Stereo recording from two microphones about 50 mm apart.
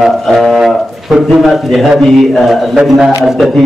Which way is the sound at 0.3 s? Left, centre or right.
Centre.